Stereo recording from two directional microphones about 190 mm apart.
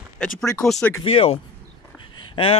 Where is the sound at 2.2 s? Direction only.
25° left (ahead or behind).